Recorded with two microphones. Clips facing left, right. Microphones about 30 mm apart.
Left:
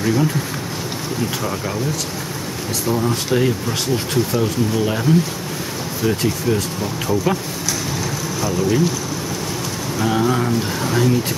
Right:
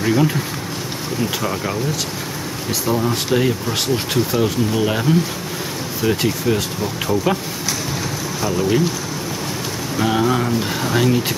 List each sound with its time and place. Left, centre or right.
0.0 s speech: centre
3.3 s speech: centre
4.1 s speech: right
5.1 s speech: centre
8.4 s speech: centre
9.9 s speech: centre